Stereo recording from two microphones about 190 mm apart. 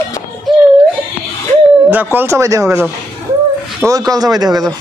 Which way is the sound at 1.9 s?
10° right (ahead or behind).